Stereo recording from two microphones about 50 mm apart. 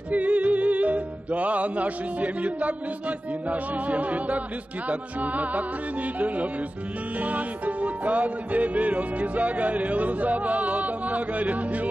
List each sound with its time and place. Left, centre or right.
0.1 s music: right